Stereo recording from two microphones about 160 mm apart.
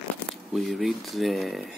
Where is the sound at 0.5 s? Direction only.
Centre (ahead or behind).